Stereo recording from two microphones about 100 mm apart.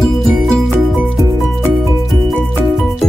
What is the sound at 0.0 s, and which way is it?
Music, centre (ahead or behind).